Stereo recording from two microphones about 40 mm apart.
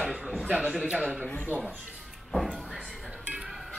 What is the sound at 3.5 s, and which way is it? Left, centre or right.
Music, centre.